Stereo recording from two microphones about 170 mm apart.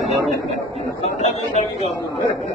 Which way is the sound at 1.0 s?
40° left (ahead or behind).